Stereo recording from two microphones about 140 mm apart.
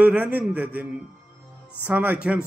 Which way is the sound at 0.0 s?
10° right (ahead or behind).